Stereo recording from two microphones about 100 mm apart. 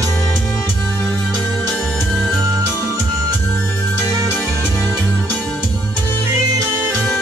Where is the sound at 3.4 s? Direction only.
20° left (ahead or behind).